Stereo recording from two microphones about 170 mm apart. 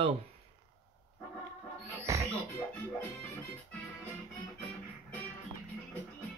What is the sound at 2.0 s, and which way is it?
Music, 20° right (ahead or behind).